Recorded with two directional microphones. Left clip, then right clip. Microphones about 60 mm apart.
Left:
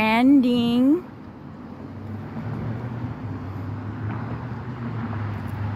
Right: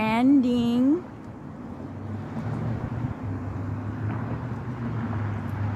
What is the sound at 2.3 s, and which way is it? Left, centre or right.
Vehicle, centre.